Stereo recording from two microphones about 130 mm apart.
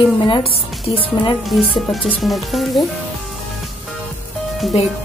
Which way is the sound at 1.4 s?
Centre (ahead or behind).